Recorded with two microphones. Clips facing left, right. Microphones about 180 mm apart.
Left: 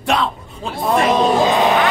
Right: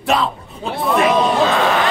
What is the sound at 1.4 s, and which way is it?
Speech, 15° left (ahead or behind).